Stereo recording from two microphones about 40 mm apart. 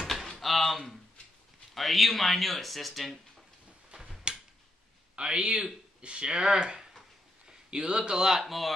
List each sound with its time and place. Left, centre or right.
0.0 s a sound: centre
1.7 s speech: centre
4.3 s tick-tock: right
5.1 s a man's voice: right; by 8.5 s centre
8.5 s speech: centre